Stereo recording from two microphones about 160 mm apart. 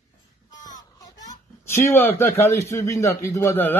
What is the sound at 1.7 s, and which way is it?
Speech, 15° left (ahead or behind).